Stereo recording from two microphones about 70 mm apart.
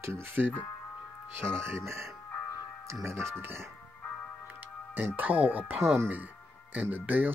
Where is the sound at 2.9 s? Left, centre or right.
Right.